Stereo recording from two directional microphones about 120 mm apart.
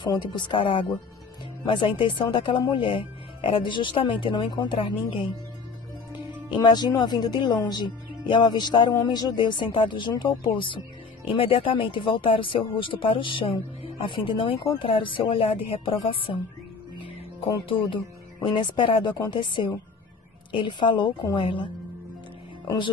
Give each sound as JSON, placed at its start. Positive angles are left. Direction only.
{"t": 0.0, "sound": "speech", "side_deg": 40}
{"t": 6.5, "sound": "speech", "side_deg": 35}